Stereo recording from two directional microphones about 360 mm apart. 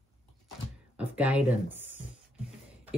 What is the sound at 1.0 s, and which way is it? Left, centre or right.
Speech, centre.